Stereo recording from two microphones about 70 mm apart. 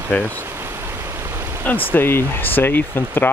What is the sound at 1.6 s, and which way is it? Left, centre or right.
Speech, left.